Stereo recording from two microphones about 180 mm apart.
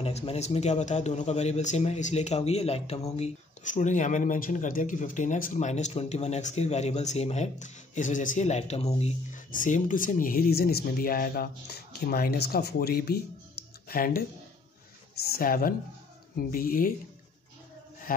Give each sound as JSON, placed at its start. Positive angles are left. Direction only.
{"t": 0.0, "sound": "speech", "side_deg": 35}